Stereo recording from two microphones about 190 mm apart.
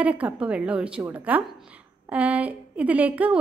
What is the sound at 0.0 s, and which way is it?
A woman's voice, 5° right (ahead or behind).